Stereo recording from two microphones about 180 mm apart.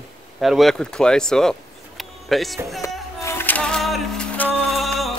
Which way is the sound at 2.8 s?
15° left (ahead or behind).